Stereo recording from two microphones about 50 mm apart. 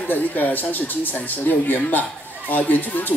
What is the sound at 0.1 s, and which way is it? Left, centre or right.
Speech, left.